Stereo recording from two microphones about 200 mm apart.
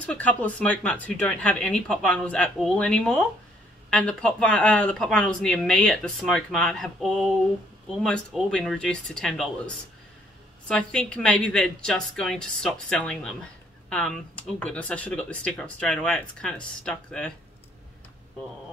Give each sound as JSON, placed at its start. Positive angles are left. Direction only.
{"t": 0.0, "sound": "a woman's voice", "side_deg": 5}
{"t": 10.7, "sound": "a woman's voice", "side_deg": 5}